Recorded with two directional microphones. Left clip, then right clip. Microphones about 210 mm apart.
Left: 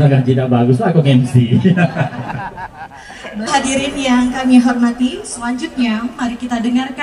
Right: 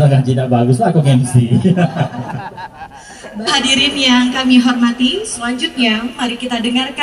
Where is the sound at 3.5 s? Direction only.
60° left (ahead or behind).